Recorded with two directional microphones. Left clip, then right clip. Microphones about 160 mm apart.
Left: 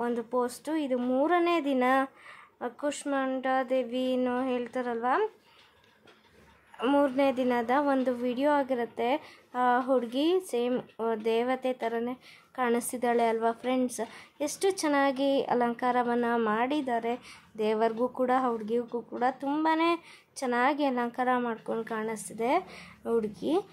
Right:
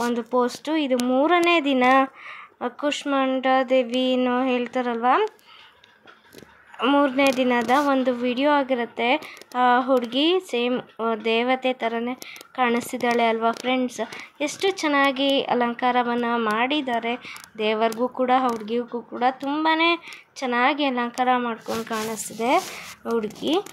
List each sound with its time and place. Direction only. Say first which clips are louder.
0.0 s speech: right 7 dB; 15° right (ahead or behind)
6.8 s speech: right 6 dB; 10° right (ahead or behind)
21.8 s speech: right 6 dB; 20° right (ahead or behind)
23.0 s speech: right 4 dB; 5° right (ahead or behind)